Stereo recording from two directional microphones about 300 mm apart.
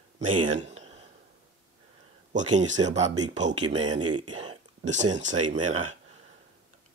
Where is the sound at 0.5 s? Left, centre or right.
Right.